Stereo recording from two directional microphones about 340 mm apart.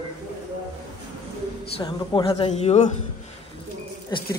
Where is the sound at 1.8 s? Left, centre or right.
Centre.